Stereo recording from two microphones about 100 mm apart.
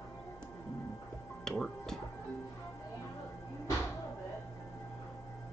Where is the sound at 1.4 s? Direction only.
5° left (ahead or behind).